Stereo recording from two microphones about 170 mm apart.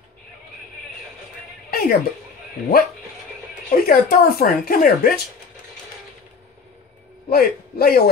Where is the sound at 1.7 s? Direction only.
65° left (ahead or behind).